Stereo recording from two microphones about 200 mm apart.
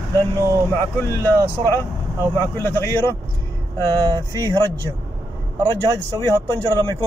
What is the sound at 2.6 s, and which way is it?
Speech, 10° left (ahead or behind).